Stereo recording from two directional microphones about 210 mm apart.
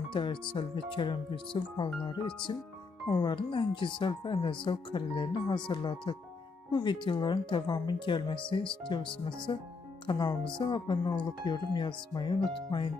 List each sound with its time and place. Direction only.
0.1 s speech: 25° left (ahead or behind)